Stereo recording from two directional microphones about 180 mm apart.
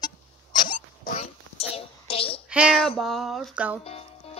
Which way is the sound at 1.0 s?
40° left (ahead or behind).